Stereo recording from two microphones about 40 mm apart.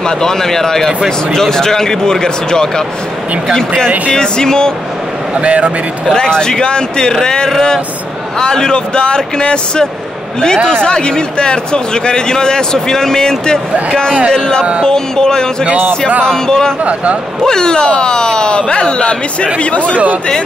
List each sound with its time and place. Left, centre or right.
0.0 s a man's voice: centre
5.3 s speech: right
6.1 s a man's voice: centre
16.8 s speech: right
17.4 s a man's voice: centre